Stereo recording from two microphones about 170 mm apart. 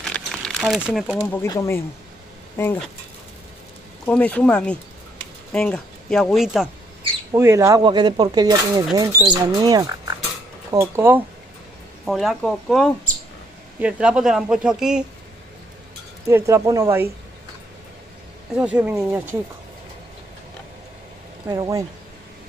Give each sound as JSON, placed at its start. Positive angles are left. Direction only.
{"t": 0.0, "sound": "crumpling", "side_deg": 5}
{"t": 1.2, "sound": "speech", "side_deg": 10}
{"t": 4.0, "sound": "speech", "side_deg": 5}
{"t": 7.3, "sound": "speech", "side_deg": -15}
{"t": 12.0, "sound": "speech", "side_deg": 0}
{"t": 16.3, "sound": "speech", "side_deg": -15}
{"t": 18.5, "sound": "speech", "side_deg": -5}
{"t": 21.5, "sound": "speech", "side_deg": -20}